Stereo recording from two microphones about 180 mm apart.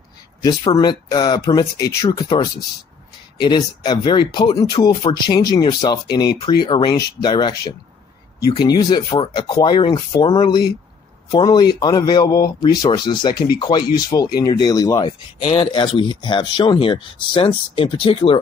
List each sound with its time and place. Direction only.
0.7 s speech: 25° left (ahead or behind)